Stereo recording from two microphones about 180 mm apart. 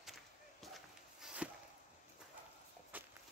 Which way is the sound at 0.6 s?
Centre (ahead or behind).